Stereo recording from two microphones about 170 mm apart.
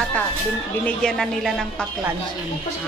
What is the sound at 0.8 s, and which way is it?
Speech, 5° left (ahead or behind).